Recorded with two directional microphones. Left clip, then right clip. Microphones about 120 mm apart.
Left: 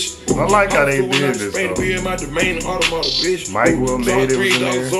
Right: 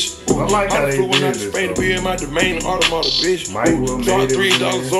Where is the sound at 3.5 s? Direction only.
15° left (ahead or behind).